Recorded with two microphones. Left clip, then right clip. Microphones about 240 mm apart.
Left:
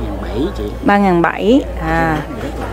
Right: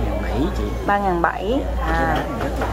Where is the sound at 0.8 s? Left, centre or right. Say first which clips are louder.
Left 6 dB; left.